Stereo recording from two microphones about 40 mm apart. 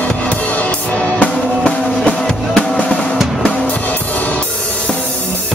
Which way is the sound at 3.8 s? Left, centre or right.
Left.